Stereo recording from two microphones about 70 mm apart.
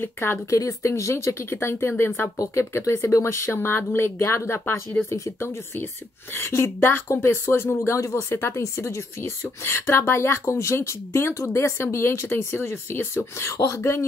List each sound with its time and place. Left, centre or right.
0.0 s speech: left
0.5 s speech: left
2.3 s speech: left
6.3 s speech: left
7.9 s speech: left